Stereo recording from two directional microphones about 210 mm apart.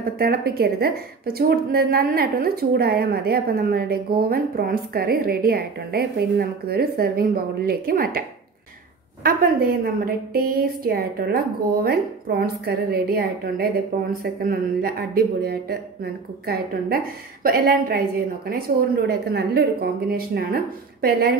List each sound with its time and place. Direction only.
0.2 s a woman's voice: 45° right (ahead or behind)
9.2 s a woman's voice: 45° right (ahead or behind)